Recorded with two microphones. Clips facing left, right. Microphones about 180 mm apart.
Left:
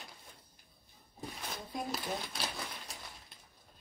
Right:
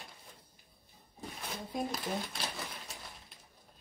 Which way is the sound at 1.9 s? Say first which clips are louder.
Right 1 dB; centre (ahead or behind).